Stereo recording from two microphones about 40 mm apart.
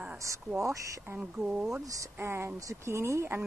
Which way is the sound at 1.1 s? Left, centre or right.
Right.